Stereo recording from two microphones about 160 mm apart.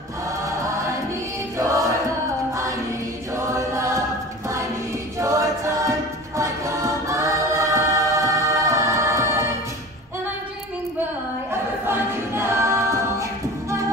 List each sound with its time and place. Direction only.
1.6 s music: 20° right (ahead or behind)
3.3 s choir: 20° right (ahead or behind)
5.2 s choir: 20° right (ahead or behind)
11.9 s a capella: 15° right (ahead or behind)